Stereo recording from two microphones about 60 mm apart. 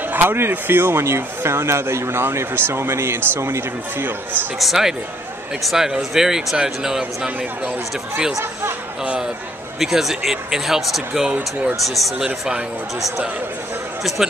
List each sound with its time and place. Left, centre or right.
0.1 s speech: right
4.0 s speech: right
4.6 s speech: centre
9.8 s speech: centre